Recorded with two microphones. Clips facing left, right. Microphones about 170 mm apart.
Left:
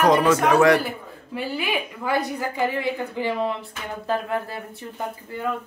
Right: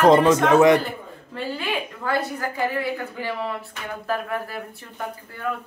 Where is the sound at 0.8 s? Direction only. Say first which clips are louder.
Even; 10° left (ahead or behind).